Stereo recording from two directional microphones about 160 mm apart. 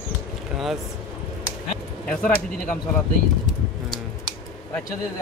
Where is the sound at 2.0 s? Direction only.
5° left (ahead or behind).